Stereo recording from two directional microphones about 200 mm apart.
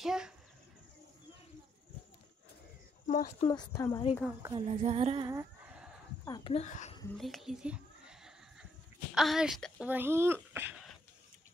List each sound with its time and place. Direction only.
0.0 s a child's voice: 5° right (ahead or behind)
3.1 s a child's voice: 40° left (ahead or behind)
3.3 s speech: 20° left (ahead or behind)
4.4 s a sound: 20° right (ahead or behind)
4.6 s female singing: 30° right (ahead or behind)
5.2 s a sound: 15° right (ahead or behind)
6.2 s speech: 20° left (ahead or behind)
7.2 s a sound: centre (ahead or behind)
9.1 s speech: centre (ahead or behind)